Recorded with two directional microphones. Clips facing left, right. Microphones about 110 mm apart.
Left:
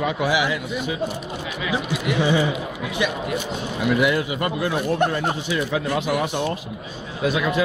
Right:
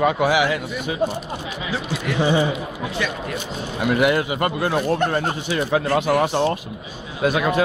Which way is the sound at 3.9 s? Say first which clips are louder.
Right 2 dB; 55° right (ahead or behind).